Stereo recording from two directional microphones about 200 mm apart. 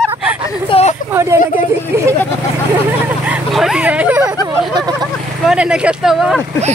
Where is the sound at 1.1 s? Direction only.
15° right (ahead or behind).